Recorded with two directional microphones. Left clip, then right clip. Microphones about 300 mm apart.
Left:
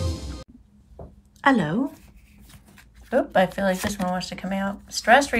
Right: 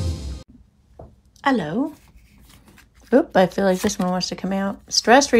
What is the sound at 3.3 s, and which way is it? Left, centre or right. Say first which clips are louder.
Speech: right 3 dB; centre.